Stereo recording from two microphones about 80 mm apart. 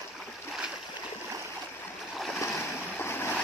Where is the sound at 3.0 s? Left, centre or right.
Left.